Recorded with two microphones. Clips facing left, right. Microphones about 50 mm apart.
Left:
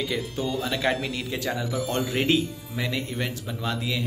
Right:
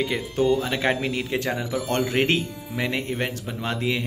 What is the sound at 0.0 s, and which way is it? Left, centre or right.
Speech, right.